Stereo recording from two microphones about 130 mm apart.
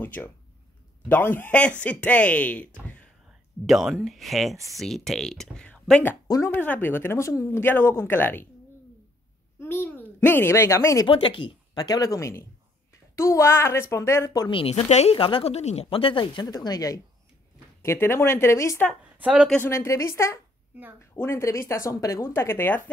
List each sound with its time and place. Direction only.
0.0 s speech: 15° left (ahead or behind)
3.6 s speech: centre (ahead or behind)
6.2 s speech: 25° left (ahead or behind)
6.5 s speech: 15° left (ahead or behind)
9.6 s speech: 15° left (ahead or behind)
11.1 s speech: 40° left (ahead or behind)
14.6 s speech: 45° left (ahead or behind)
14.9 s a woman's voice: 60° left (ahead or behind)
15.1 s speech: 45° left (ahead or behind); by 18.9 s 20° left (ahead or behind)
19.1 s speech: 10° right (ahead or behind)
19.5 s speech: 20° left (ahead or behind)